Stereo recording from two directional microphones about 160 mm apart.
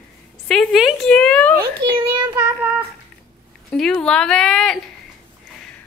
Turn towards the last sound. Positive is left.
turn(degrees=5)  # may be behind; listen again after turning